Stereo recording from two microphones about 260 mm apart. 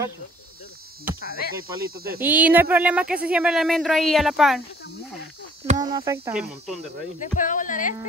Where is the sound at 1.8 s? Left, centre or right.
Right.